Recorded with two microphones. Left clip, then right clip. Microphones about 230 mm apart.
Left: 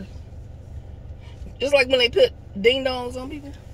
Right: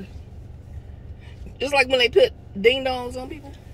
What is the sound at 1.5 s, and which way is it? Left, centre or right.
Speech, right.